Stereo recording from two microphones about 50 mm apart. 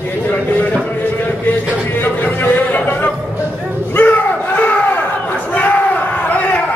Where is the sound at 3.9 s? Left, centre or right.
Left.